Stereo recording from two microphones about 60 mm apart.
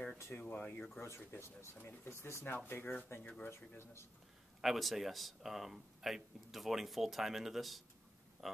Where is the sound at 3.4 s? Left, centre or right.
Left.